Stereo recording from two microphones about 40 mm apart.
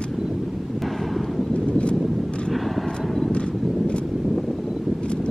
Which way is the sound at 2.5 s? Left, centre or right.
Centre.